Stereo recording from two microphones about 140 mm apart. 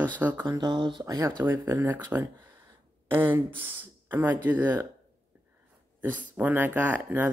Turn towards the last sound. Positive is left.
turn(degrees=-15)  # may be behind; listen again after turning